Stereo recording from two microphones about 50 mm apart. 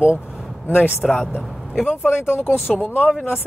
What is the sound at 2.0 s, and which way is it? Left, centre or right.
Speech, left.